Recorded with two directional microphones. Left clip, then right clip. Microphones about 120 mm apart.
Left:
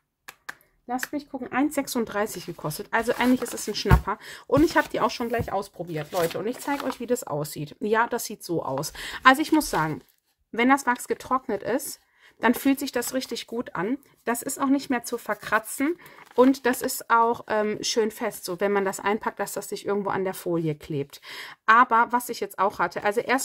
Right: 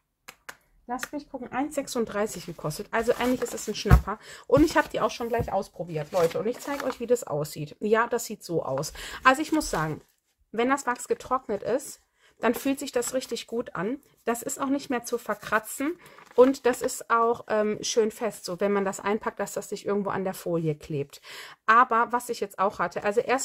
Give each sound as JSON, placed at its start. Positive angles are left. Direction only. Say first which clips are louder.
{"t": 1.1, "sound": "speech", "louder": "left 4 dB", "side_deg": 65}
{"t": 1.7, "sound": "speech", "louder": "left 1 dB", "side_deg": 40}
{"t": 4.5, "sound": "speech", "louder": "even", "side_deg": 10}
{"t": 5.0, "sound": "speech", "louder": "left 1 dB", "side_deg": 50}